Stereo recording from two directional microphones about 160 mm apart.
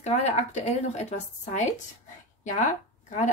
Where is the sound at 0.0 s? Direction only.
45° left (ahead or behind).